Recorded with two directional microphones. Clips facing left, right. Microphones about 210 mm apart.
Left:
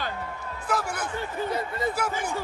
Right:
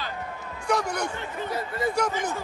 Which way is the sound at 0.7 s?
Centre (ahead or behind).